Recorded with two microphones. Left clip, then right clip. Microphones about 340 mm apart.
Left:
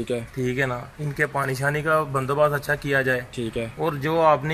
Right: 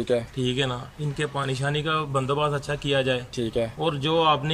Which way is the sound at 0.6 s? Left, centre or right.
Centre.